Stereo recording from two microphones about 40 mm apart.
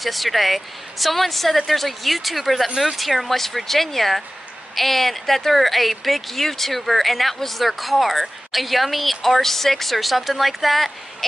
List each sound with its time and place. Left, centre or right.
0.0 s speech: centre